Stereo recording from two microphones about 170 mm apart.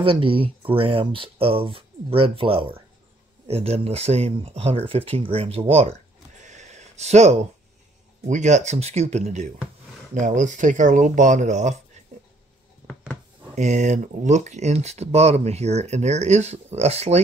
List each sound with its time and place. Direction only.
0.0 s speech: 30° right (ahead or behind)
5.7 s a sound: 40° right (ahead or behind)
8.3 s speech: 45° right (ahead or behind)
13.6 s speech: 45° right (ahead or behind)